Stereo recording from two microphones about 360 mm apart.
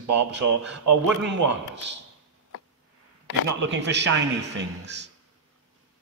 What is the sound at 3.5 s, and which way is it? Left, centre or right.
A man's voice, right.